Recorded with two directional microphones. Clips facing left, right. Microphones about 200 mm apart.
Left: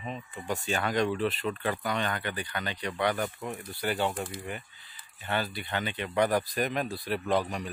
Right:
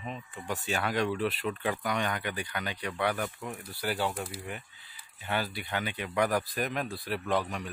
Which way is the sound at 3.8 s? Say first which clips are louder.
Left 2 dB; 5° right (ahead or behind).